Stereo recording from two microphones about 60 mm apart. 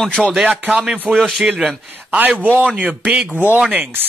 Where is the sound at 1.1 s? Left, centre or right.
Centre.